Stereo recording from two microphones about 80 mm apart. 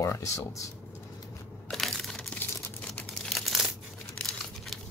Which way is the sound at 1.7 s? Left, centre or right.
Centre.